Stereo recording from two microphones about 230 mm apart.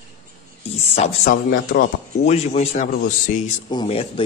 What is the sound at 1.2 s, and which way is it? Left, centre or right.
Speech, left.